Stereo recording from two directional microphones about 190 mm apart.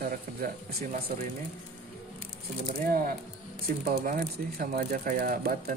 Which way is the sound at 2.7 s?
50° right (ahead or behind).